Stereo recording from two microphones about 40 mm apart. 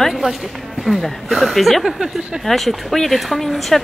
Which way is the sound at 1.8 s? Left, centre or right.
Centre.